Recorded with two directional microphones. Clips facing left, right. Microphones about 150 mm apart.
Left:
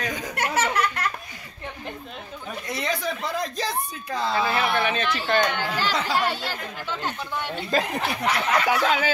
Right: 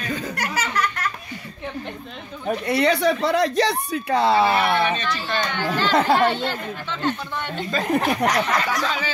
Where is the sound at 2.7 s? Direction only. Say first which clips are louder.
Right 9 dB; 70° right (ahead or behind).